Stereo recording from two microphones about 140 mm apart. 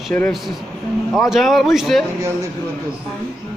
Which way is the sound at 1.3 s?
Centre (ahead or behind).